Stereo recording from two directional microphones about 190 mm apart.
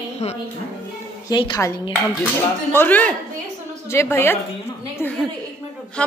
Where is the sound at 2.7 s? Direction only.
10° left (ahead or behind).